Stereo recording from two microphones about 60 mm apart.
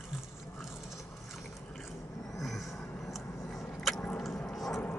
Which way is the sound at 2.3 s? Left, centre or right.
Centre.